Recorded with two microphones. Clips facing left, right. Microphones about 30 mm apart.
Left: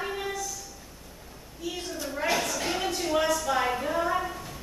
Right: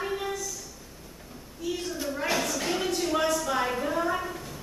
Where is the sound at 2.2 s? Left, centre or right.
Centre.